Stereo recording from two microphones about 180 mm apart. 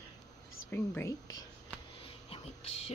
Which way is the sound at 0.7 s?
10° left (ahead or behind).